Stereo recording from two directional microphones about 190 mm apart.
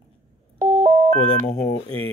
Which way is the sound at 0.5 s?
45° right (ahead or behind).